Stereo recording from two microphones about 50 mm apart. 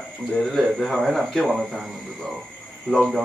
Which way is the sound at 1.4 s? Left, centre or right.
Centre.